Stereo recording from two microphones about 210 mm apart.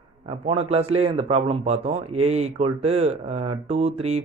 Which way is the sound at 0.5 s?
30° right (ahead or behind).